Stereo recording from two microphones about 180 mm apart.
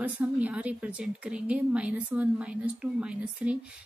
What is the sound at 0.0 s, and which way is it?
A woman's voice, 10° right (ahead or behind).